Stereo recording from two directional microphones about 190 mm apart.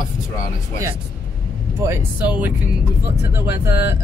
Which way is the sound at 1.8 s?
10° right (ahead or behind).